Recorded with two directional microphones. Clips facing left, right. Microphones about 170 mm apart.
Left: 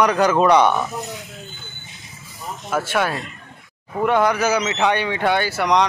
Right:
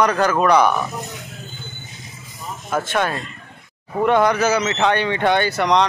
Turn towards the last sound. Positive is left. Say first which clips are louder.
# right 1 dB
turn(degrees=10)  # may be behind; listen again after turning